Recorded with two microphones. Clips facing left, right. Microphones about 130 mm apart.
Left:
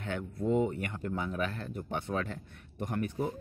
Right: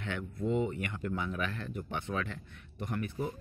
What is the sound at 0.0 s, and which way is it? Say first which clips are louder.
Speech: left 2 dB; 45° left (ahead or behind).